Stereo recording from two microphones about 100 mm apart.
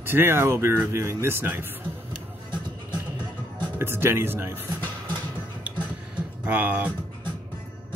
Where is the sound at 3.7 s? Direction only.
25° right (ahead or behind).